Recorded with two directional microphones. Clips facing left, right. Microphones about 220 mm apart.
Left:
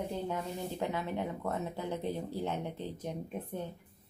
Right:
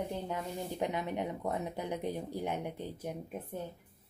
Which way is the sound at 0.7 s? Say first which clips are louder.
Right 2 dB; 15° right (ahead or behind).